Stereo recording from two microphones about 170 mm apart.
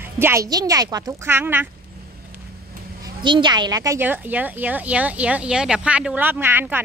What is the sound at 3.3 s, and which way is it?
Speech, 25° right (ahead or behind).